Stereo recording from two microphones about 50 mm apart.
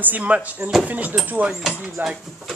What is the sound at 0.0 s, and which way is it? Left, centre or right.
Speech, right.